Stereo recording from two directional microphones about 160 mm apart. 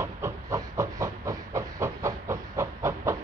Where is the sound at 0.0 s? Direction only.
15° right (ahead or behind).